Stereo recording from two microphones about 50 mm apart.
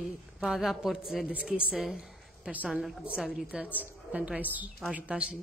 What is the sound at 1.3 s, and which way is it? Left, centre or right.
Speech, right.